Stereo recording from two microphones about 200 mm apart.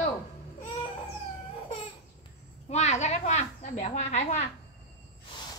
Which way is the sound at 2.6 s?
35° left (ahead or behind).